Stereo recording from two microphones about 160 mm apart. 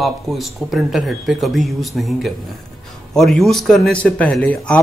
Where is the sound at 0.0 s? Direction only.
Centre (ahead or behind).